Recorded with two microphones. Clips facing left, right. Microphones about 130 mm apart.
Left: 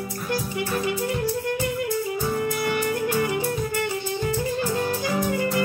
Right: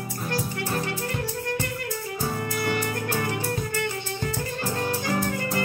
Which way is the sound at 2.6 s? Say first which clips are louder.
Left 3 dB; 5° left (ahead or behind).